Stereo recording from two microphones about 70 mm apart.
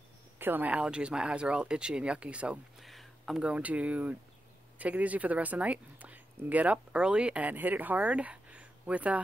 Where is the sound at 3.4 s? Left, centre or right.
Centre.